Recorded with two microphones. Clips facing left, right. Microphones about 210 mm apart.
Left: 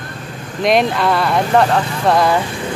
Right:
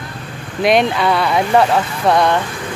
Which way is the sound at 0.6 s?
Centre (ahead or behind).